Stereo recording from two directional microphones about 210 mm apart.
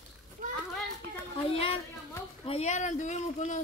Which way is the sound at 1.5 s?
25° left (ahead or behind).